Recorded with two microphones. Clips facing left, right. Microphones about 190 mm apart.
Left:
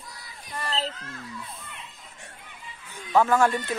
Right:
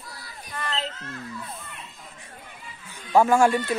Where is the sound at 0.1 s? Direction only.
20° left (ahead or behind).